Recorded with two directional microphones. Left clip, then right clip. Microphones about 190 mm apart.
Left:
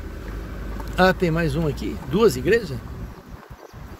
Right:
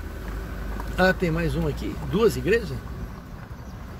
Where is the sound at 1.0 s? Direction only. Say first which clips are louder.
Left 3 dB; 45° left (ahead or behind).